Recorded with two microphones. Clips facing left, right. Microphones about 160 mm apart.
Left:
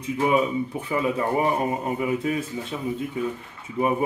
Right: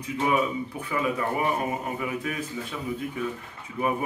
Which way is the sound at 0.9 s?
25° left (ahead or behind).